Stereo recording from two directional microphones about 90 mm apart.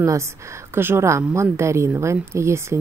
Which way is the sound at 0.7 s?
25° right (ahead or behind).